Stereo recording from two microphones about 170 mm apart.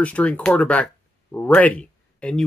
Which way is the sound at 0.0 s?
10° left (ahead or behind).